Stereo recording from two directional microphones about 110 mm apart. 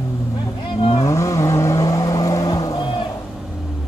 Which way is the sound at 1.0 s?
30° left (ahead or behind).